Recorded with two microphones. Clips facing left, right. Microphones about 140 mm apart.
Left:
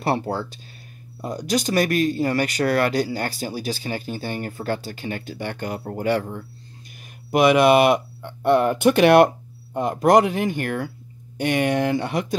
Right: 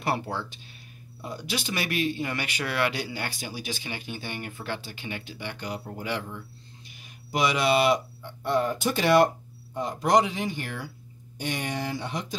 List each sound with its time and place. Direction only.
0.0 s speech: 40° left (ahead or behind); by 12.4 s 65° left (ahead or behind)